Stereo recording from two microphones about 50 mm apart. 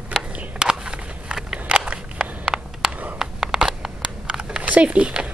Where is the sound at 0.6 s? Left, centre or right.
Centre.